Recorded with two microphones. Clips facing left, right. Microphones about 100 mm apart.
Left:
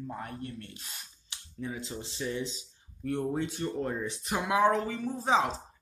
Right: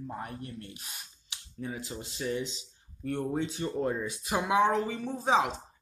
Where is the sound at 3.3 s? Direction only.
15° right (ahead or behind).